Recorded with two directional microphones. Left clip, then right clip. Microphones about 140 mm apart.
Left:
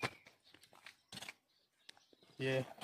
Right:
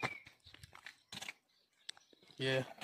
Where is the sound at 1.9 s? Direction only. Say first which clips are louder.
Right 9 dB; 20° left (ahead or behind).